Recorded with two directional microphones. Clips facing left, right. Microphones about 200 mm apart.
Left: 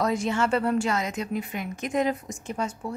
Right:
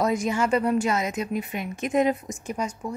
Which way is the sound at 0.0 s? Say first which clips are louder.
Right 1 dB; 20° right (ahead or behind).